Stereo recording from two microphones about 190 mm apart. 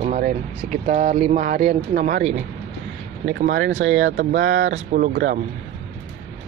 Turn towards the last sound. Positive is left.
turn(degrees=-50)  # may be behind; listen again after turning